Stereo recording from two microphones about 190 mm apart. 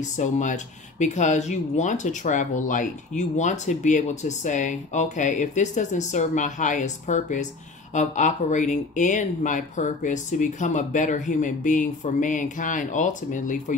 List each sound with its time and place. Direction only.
0.0 s speech: 40° left (ahead or behind)